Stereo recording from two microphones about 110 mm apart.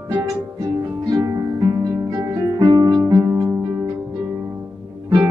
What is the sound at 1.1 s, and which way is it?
Harp, 35° right (ahead or behind).